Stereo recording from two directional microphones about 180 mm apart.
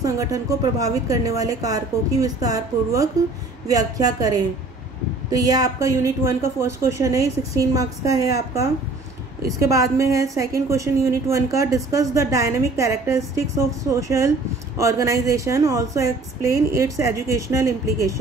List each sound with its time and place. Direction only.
0.0 s a woman's voice: 20° right (ahead or behind)